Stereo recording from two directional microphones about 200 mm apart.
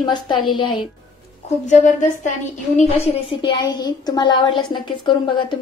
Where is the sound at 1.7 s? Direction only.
40° left (ahead or behind).